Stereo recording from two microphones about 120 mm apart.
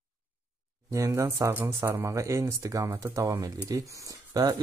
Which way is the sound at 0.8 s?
25° right (ahead or behind).